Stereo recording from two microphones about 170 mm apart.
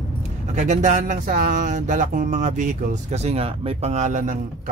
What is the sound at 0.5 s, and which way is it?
Speech, 45° right (ahead or behind).